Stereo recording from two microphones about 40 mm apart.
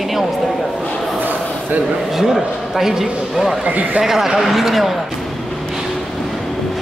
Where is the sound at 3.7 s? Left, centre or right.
Right.